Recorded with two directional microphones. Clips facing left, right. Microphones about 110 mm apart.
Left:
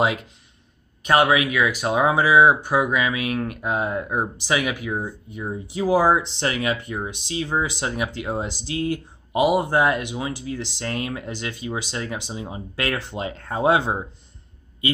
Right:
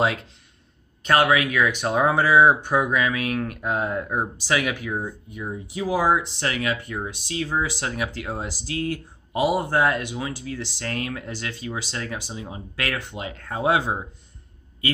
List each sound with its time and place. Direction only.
0.0 s speech: 15° left (ahead or behind)
5.3 s speech: 30° left (ahead or behind)